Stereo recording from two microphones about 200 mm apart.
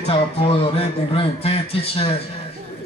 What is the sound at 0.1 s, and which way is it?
Speech, 30° left (ahead or behind).